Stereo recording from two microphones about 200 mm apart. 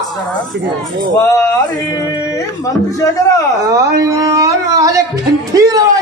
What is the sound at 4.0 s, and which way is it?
Speech, 15° right (ahead or behind).